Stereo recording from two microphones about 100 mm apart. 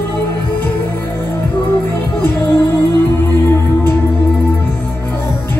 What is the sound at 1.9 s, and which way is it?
Music, 20° left (ahead or behind).